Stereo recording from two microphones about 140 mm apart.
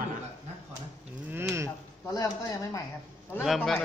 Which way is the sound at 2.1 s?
25° left (ahead or behind).